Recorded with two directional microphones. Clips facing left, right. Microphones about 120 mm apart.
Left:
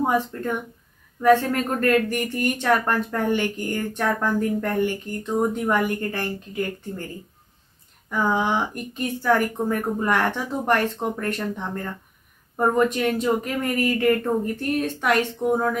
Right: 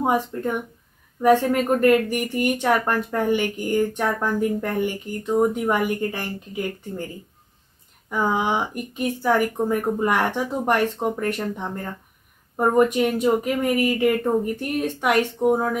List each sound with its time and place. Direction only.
0.0 s speech: 15° right (ahead or behind)
8.1 s speech: 15° right (ahead or behind)